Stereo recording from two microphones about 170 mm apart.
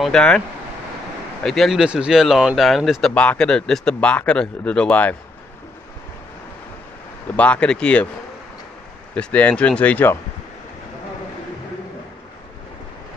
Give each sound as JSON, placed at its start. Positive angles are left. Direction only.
{"t": 0.0, "sound": "speech", "side_deg": 5}
{"t": 1.4, "sound": "speech", "side_deg": 0}
{"t": 7.3, "sound": "speech", "side_deg": 5}
{"t": 9.1, "sound": "speech", "side_deg": 5}